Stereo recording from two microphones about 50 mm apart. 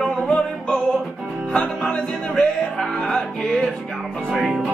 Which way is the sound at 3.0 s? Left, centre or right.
Centre.